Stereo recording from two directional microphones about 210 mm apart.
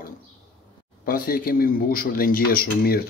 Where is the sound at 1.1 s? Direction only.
45° left (ahead or behind).